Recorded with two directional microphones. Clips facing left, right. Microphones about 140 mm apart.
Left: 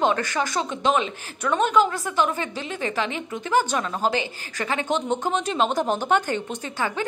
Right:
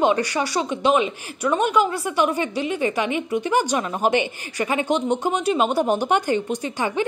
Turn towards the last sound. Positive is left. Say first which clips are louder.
# right 4 dB
turn(degrees=-15)  # may be behind; listen again after turning